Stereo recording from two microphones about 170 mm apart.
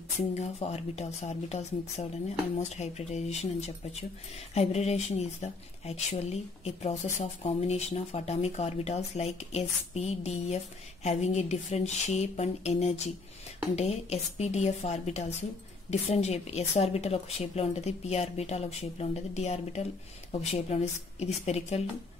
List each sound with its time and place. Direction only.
0.3 s speech: 40° left (ahead or behind)